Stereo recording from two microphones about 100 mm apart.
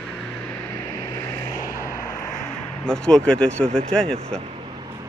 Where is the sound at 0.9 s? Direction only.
30° left (ahead or behind).